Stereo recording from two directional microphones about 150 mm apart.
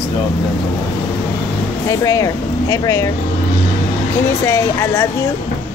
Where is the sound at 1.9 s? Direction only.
20° left (ahead or behind).